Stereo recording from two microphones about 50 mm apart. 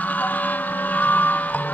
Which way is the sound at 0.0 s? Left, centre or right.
Left.